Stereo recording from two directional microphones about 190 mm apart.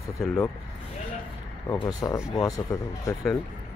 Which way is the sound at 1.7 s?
20° left (ahead or behind).